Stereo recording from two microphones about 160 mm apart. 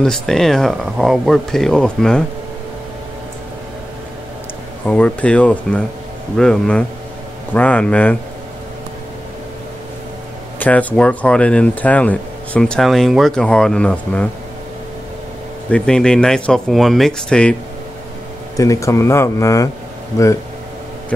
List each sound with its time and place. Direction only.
0.0 s speech: centre (ahead or behind)
4.8 s speech: 5° left (ahead or behind)
10.6 s speech: 10° left (ahead or behind)
15.7 s speech: 5° left (ahead or behind)
18.6 s speech: 20° left (ahead or behind)